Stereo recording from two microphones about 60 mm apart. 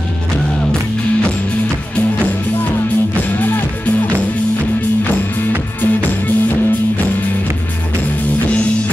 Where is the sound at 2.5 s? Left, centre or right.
Left.